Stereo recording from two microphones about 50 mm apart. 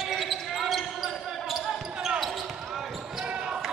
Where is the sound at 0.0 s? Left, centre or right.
Centre.